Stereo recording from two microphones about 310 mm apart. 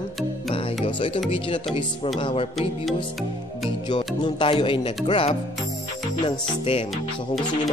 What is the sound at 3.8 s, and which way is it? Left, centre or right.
Speech, centre.